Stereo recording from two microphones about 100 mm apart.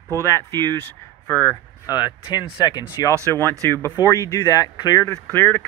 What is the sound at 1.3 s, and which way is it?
Speech, 25° left (ahead or behind).